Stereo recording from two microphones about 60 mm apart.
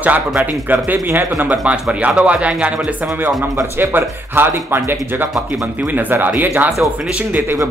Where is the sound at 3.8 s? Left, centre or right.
Right.